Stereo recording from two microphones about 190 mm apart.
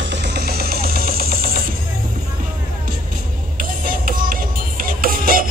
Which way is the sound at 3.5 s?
45° right (ahead or behind).